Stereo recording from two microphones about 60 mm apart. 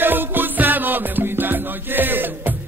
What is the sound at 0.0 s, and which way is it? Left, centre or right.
Music, right.